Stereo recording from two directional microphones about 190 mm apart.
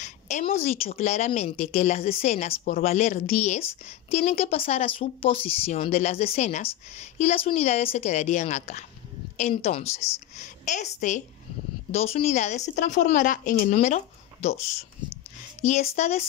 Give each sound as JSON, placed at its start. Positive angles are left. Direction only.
{"t": 0.0, "sound": "a woman's voice", "side_deg": 40}
{"t": 15.6, "sound": "a woman's voice", "side_deg": 40}